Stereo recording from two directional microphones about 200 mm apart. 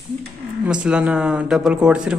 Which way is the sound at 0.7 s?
5° right (ahead or behind).